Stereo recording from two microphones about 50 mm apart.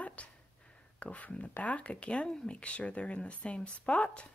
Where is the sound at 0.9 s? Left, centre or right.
Left.